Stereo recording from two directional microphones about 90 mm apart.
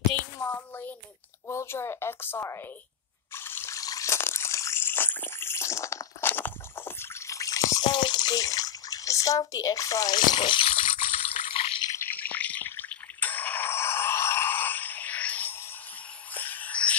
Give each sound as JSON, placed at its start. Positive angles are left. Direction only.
{"t": 0.2, "sound": "a sound", "side_deg": 25}
{"t": 1.5, "sound": "a woman's voice", "side_deg": 30}
{"t": 3.3, "sound": "water", "side_deg": 25}
{"t": 3.7, "sound": "water", "side_deg": 40}
{"t": 7.8, "sound": "bathtub", "side_deg": 55}
{"t": 11.9, "sound": "a sound", "side_deg": 25}